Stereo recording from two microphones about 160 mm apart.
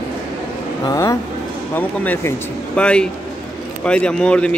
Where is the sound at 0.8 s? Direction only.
20° left (ahead or behind).